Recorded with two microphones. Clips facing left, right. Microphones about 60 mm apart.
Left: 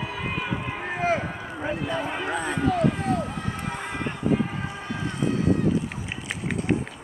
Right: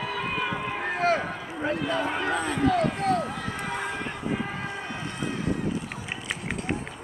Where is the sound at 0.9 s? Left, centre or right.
Right.